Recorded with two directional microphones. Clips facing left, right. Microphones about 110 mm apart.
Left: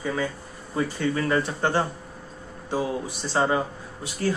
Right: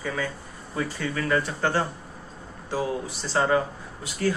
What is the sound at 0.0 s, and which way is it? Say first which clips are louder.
Speech: left 2 dB; 25° left (ahead or behind).